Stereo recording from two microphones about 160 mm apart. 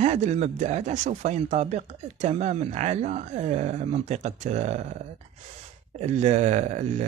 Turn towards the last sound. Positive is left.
turn(degrees=-45)  # may be behind; listen again after turning